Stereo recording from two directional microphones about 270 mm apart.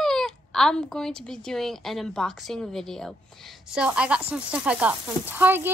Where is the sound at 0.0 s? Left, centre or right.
Centre.